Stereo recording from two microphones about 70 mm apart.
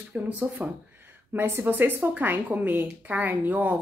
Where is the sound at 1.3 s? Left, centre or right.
Right.